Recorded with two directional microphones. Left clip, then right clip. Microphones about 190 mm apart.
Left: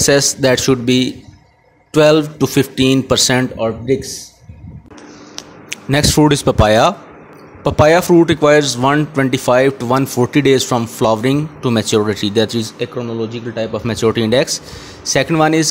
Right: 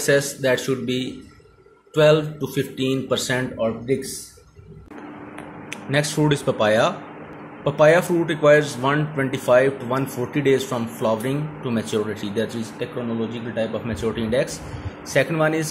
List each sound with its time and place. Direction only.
0.0 s speech: 50° left (ahead or behind)
5.7 s speech: 55° left (ahead or behind)